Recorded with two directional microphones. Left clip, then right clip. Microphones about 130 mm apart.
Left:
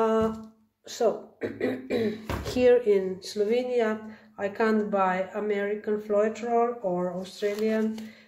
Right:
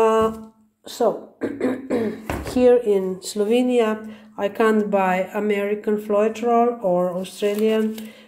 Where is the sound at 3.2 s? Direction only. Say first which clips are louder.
Right 6 dB; 35° right (ahead or behind).